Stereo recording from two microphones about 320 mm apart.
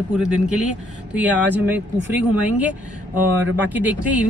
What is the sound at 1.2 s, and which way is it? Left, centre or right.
Speech, centre.